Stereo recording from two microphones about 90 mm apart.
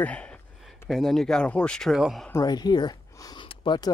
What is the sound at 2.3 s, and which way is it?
Speech, 50° left (ahead or behind).